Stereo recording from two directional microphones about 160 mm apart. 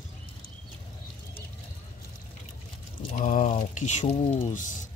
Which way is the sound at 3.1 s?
50° left (ahead or behind).